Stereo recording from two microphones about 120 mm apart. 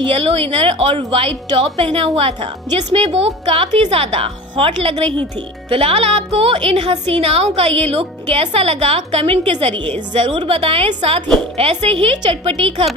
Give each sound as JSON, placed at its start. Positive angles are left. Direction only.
{"t": 0.1, "sound": "a woman's voice", "side_deg": -55}
{"t": 10.2, "sound": "a woman's voice", "side_deg": -45}
{"t": 11.0, "sound": "a woman's voice", "side_deg": -70}